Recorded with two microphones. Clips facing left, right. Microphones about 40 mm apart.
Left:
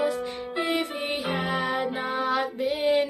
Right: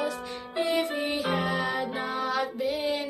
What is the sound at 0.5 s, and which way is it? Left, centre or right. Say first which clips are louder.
Music: right 1 dB; left.